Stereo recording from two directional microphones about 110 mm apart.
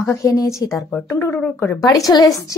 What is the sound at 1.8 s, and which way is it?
Speech, 30° left (ahead or behind).